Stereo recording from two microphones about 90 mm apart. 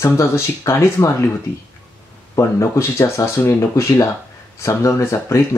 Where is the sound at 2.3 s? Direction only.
35° left (ahead or behind).